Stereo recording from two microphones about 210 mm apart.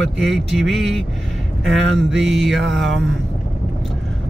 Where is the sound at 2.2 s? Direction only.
Centre (ahead or behind).